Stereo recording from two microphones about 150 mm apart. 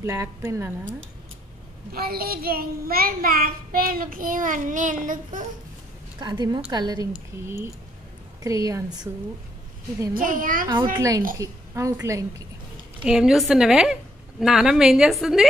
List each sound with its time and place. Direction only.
0.0 s a woman's voice: 20° right (ahead or behind)
1.9 s a child's voice: 85° right; by 5.4 s 60° right (ahead or behind)
6.1 s a woman's voice: 30° right (ahead or behind)
7.4 s a woman's voice: 15° right (ahead or behind)
10.1 s a child's voice: 65° right (ahead or behind)
11.0 s a woman's voice: 20° right (ahead or behind)
13.0 s a woman's voice: 5° right (ahead or behind)